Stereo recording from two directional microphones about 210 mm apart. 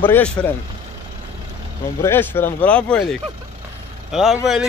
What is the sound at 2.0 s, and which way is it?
Speech, 10° left (ahead or behind).